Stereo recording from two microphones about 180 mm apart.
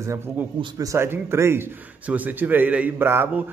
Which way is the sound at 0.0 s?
15° right (ahead or behind).